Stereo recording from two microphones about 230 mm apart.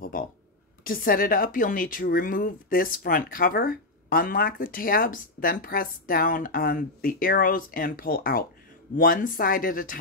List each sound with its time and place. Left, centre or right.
0.8 s a woman's voice: left